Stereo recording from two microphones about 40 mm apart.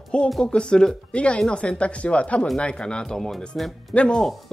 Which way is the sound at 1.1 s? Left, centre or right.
Left.